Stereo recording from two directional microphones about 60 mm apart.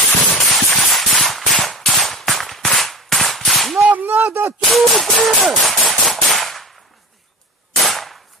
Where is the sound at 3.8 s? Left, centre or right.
Right.